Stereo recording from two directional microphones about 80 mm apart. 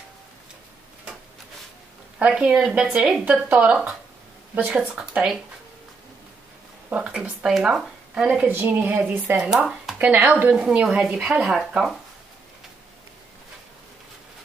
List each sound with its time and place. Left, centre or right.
2.1 s speech: centre
6.9 s speech: centre
7.4 s speech: centre
8.5 s speech: right
9.4 s speech: centre
9.9 s speech: centre
10.5 s speech: centre